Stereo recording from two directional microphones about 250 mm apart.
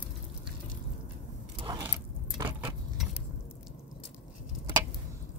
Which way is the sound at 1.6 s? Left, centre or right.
Centre.